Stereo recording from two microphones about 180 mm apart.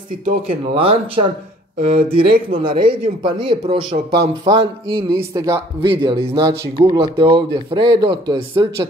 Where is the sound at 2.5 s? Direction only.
30° right (ahead or behind).